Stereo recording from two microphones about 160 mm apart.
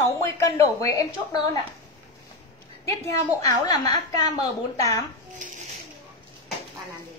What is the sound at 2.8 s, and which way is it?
A woman's voice, 20° left (ahead or behind).